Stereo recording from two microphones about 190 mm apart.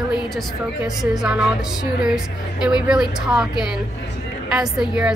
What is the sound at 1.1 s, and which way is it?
A woman's voice, 5° right (ahead or behind).